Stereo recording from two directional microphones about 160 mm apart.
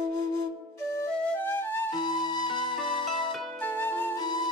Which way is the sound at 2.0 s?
25° left (ahead or behind).